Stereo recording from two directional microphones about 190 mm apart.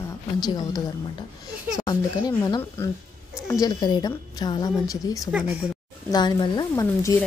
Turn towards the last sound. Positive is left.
turn(degrees=15)  # may be behind; listen again after turning